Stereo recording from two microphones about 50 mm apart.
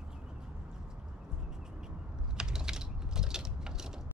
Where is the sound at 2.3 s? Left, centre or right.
Centre.